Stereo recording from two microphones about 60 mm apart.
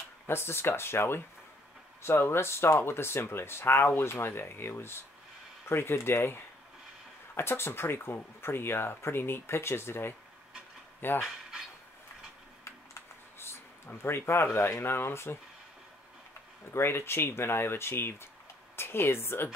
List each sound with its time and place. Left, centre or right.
0.3 s speech: left
12.9 s a sound: left
16.7 s speech: left